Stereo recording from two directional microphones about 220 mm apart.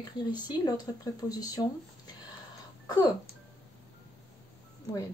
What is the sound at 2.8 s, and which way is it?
Speech, 15° left (ahead or behind).